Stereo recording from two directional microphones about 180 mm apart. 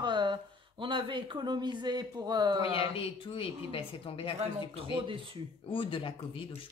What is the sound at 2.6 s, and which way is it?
A woman's voice, 30° left (ahead or behind).